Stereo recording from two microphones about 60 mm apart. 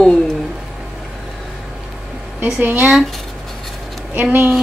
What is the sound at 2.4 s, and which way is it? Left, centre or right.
Speech, right.